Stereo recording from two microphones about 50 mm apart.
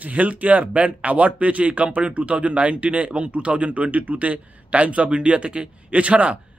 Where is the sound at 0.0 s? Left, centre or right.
Right.